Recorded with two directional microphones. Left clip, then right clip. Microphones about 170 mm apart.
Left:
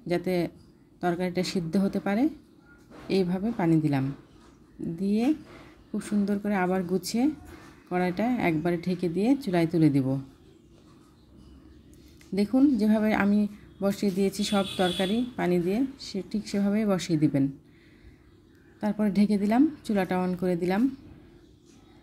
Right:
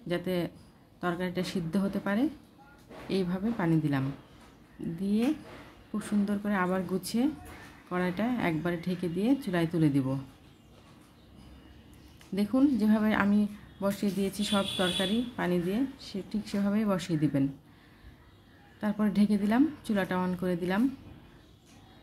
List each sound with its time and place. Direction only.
0.1 s a woman's voice: 20° left (ahead or behind)
5.0 s a woman's voice: 15° left (ahead or behind)
12.4 s speech: 20° left (ahead or behind)
18.8 s speech: 15° left (ahead or behind)